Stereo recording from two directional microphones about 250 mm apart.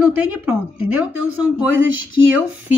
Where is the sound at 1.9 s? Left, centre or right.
Right.